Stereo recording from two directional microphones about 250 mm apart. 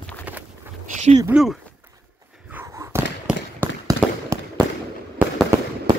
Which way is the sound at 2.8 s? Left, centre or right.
Centre.